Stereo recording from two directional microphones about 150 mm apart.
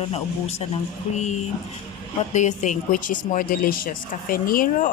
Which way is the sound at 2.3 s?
55° left (ahead or behind).